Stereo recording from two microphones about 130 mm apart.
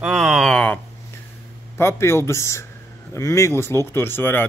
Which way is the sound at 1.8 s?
20° left (ahead or behind).